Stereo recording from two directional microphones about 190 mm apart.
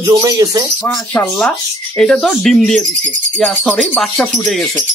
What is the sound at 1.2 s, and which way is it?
Speech, 5° left (ahead or behind).